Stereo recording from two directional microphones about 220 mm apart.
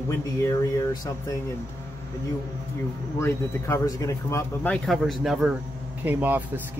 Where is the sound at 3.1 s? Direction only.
10° left (ahead or behind); by 6.4 s 10° right (ahead or behind).